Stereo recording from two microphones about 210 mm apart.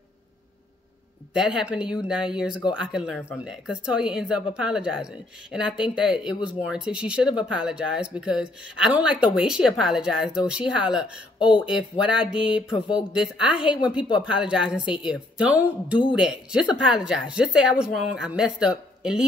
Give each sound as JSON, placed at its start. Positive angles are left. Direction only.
{"t": 1.3, "sound": "a woman's voice", "side_deg": -5}
{"t": 12.7, "sound": "speech", "side_deg": 25}
{"t": 13.1, "sound": "a woman's voice", "side_deg": -5}